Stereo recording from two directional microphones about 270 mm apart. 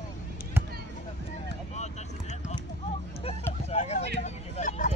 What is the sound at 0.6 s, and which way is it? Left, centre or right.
Chop, centre.